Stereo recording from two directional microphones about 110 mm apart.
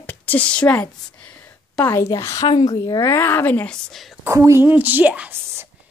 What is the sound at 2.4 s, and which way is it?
Speech, 40° left (ahead or behind).